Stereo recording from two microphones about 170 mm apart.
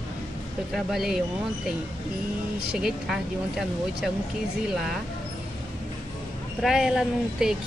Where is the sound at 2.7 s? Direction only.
5° right (ahead or behind).